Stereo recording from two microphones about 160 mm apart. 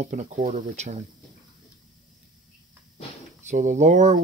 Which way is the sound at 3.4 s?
50° right (ahead or behind).